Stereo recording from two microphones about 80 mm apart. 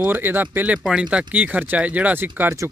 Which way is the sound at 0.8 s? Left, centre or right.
Centre.